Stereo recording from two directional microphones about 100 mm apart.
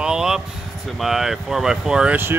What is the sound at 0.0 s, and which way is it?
Vehicle, 5° right (ahead or behind).